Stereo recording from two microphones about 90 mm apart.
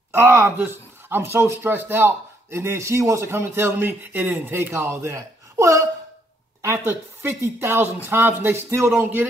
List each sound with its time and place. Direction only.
0.1 s speech: 25° right (ahead or behind)